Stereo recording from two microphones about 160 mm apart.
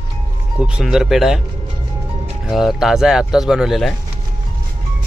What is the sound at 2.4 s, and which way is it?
Speech, centre (ahead or behind).